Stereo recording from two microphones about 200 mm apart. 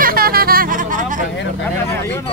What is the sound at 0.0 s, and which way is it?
Hubbub, 45° right (ahead or behind).